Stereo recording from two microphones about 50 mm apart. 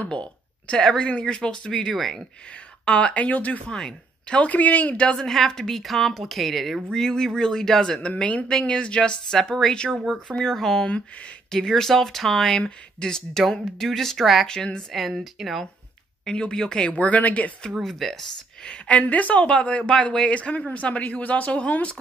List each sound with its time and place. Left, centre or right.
0.0 s speech: left
2.8 s speech: left
3.6 s a woman's voice: centre
4.5 s speech: left
5.1 s a woman's voice: centre
8.2 s speech: left; by 14.4 s centre
14.4 s a woman's voice: centre
16.3 s speech: centre
17.8 s a woman's voice: centre
18.6 s speech: left